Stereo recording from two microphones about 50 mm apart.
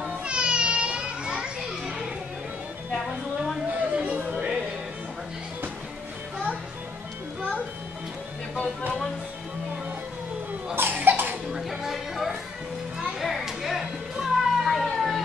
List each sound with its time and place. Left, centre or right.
0.0 s children playing: right
3.9 s a sound: right
10.7 s cough: right
11.5 s music: centre
13.2 s children playing: centre
14.1 s cat: centre